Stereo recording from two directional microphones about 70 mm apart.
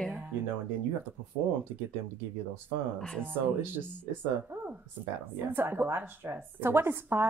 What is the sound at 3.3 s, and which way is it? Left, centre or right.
Speech, right.